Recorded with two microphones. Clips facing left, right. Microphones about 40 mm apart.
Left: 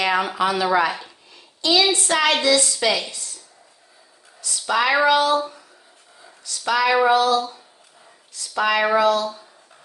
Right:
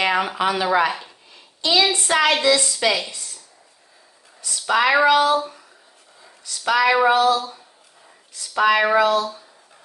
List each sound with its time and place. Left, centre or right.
0.0 s child singing: centre
2.4 s speech: centre
4.6 s speech: centre
6.4 s child singing: centre
7.3 s speech: centre
9.2 s speech: centre